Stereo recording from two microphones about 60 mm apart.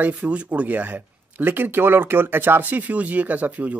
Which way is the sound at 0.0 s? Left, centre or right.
Right.